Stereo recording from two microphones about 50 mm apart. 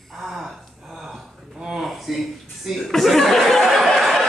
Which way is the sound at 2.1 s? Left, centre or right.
Centre.